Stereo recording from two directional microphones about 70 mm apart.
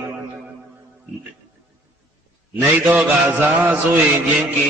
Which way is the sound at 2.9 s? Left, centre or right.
Right.